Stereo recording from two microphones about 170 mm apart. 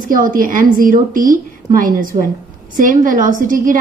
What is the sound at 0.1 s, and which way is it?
A woman's voice, 55° right (ahead or behind).